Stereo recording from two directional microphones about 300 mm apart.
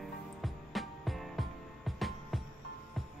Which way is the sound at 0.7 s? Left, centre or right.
Centre.